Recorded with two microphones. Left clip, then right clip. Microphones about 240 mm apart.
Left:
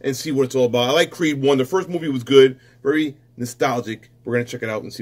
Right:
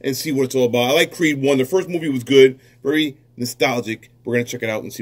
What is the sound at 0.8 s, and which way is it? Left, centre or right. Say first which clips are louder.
Speech: right 1 dB; left.